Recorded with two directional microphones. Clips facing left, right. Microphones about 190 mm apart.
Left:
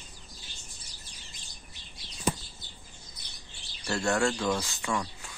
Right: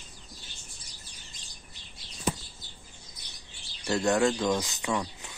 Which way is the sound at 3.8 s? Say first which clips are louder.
Right 3 dB; 15° right (ahead or behind).